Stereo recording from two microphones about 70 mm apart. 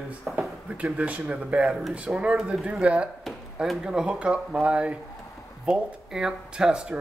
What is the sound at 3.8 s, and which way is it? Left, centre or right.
Speech, centre.